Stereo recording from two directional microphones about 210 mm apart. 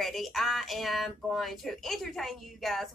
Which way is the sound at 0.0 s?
Centre (ahead or behind).